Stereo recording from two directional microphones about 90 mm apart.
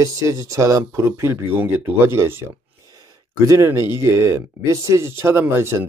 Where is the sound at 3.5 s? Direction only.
35° right (ahead or behind).